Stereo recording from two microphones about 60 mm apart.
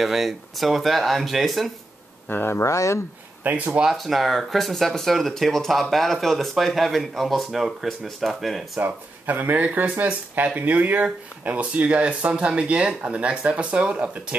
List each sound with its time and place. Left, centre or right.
0.0 s speech: centre
2.2 s speech: left
2.6 s speech: left
3.4 s speech: right
3.8 s speech: centre
8.7 s speech: right